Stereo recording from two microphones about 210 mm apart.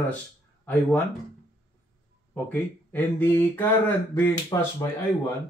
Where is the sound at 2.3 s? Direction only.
10° left (ahead or behind).